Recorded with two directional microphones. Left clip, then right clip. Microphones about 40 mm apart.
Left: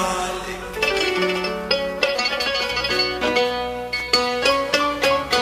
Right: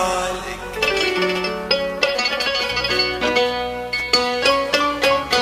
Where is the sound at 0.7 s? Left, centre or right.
Right.